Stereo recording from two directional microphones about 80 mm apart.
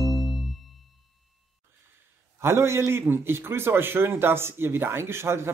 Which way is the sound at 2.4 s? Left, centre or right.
Right.